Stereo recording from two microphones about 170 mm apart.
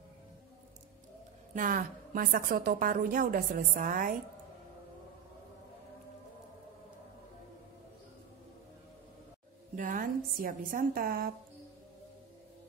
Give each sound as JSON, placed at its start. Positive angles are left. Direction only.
{"t": 1.5, "sound": "a woman's voice", "side_deg": -55}
{"t": 9.8, "sound": "a woman's voice", "side_deg": -50}